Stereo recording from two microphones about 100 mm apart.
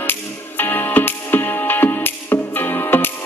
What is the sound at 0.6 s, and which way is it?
Music, 20° left (ahead or behind).